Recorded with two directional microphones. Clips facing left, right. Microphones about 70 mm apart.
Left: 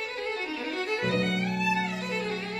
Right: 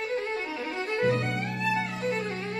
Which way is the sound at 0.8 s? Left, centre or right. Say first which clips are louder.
Right 3 dB; right.